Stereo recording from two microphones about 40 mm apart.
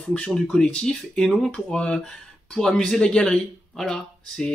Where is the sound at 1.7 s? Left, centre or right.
Left.